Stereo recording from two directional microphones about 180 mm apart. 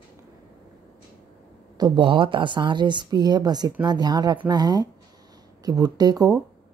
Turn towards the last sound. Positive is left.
turn(degrees=-20)  # may be behind; listen again after turning